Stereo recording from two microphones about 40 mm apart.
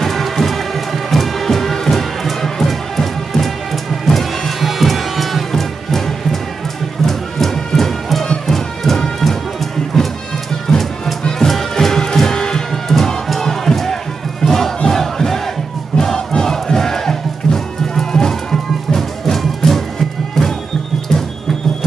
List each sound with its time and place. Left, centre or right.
0.0 s music: centre
14.4 s battle cry: centre
14.8 s crowd: centre
17.4 s music: centre